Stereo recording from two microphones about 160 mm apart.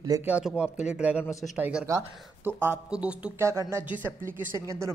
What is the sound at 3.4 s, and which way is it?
Speech, 20° right (ahead or behind).